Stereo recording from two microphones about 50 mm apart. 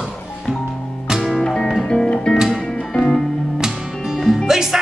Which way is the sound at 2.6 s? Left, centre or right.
Centre.